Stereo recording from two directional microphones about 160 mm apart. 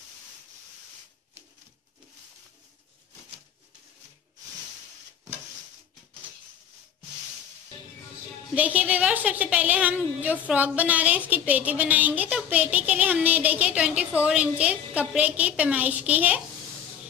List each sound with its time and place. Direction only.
8.5 s a woman's voice: 10° right (ahead or behind)